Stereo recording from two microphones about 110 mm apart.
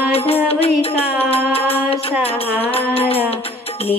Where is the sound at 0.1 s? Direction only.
60° left (ahead or behind).